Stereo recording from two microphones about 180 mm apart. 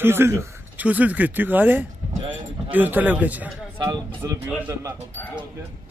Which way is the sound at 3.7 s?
25° right (ahead or behind).